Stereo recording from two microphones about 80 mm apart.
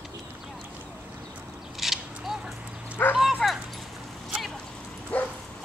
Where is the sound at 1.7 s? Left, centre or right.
Centre.